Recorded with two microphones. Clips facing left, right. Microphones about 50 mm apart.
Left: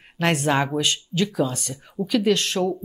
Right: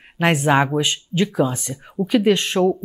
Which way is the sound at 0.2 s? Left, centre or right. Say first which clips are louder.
Right 4 dB; centre.